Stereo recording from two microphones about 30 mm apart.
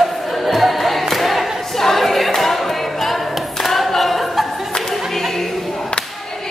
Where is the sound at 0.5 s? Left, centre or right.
Centre.